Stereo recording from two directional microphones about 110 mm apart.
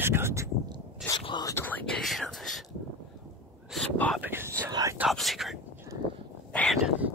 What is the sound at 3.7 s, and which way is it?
Whispering, centre (ahead or behind).